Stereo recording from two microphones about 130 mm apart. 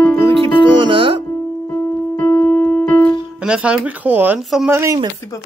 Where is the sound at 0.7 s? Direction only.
40° right (ahead or behind).